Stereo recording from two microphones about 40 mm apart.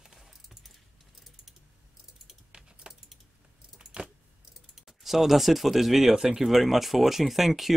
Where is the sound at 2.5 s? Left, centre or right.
Right.